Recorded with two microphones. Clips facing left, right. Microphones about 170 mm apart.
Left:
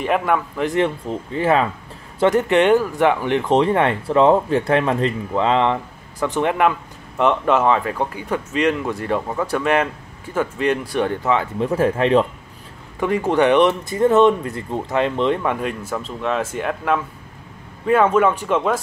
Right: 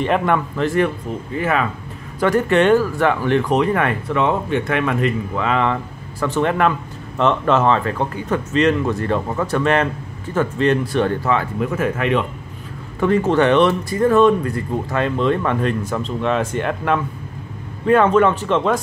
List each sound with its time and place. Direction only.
0.0 s a man's voice: 5° left (ahead or behind)
0.7 s speech: 25° left (ahead or behind)
11.6 s speech: 30° left (ahead or behind)
13.0 s speech: 15° left (ahead or behind)